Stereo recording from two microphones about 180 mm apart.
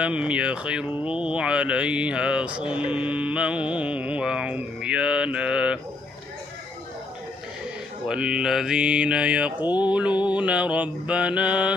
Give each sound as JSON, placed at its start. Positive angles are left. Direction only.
{"t": 0.0, "sound": "mantra", "side_deg": -5}
{"t": 8.1, "sound": "mantra", "side_deg": -5}
{"t": 9.7, "sound": "mantra", "side_deg": 25}
{"t": 9.9, "sound": "mantra", "side_deg": -5}